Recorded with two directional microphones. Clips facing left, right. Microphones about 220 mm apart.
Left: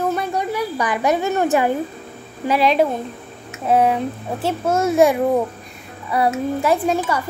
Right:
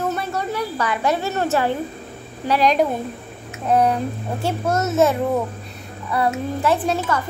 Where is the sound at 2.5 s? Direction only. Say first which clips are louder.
Left 1 dB; 5° left (ahead or behind).